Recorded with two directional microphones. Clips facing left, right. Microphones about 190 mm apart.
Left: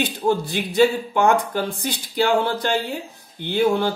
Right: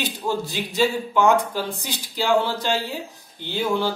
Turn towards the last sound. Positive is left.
turn(degrees=55)  # may be behind; listen again after turning